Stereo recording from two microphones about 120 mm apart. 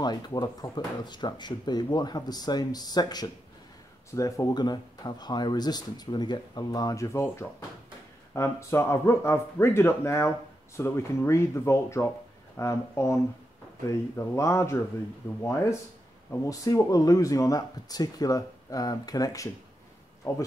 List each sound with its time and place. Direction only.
0.0 s speech: 35° left (ahead or behind)